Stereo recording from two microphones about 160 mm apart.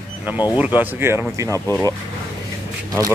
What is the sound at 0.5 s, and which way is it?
Speech, 10° right (ahead or behind).